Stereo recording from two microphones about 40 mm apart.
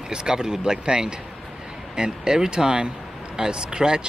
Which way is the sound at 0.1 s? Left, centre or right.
Right.